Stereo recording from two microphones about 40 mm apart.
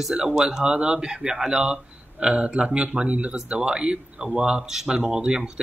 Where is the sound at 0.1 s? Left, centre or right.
Right.